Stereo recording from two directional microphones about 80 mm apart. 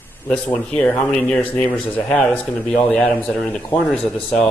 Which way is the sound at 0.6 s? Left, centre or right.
Centre.